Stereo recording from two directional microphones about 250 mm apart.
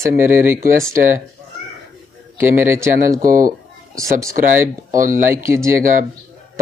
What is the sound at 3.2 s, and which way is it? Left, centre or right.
Speech, right.